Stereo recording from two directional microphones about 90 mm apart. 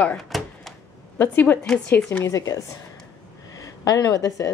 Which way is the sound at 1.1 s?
25° left (ahead or behind).